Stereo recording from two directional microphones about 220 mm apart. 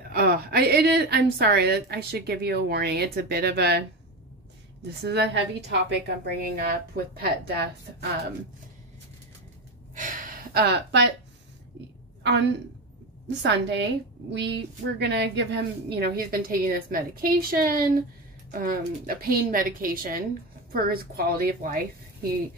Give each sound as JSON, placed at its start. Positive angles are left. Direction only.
{"t": 0.1, "sound": "a woman's voice", "side_deg": -45}
{"t": 4.9, "sound": "a woman's voice", "side_deg": -50}
{"t": 9.9, "sound": "gasp", "side_deg": -40}
{"t": 12.2, "sound": "a woman's voice", "side_deg": -55}